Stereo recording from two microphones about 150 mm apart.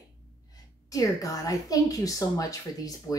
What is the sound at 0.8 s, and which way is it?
A woman's voice, 25° left (ahead or behind).